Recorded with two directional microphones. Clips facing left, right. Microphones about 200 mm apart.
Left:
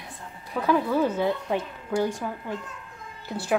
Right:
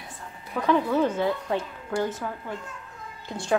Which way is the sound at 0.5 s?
5° left (ahead or behind).